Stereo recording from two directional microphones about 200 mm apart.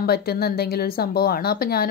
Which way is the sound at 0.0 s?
50° left (ahead or behind).